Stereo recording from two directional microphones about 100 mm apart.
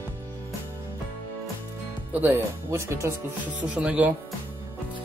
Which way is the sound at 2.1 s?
20° right (ahead or behind).